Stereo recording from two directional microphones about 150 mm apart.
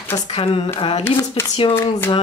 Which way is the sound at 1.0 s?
15° left (ahead or behind).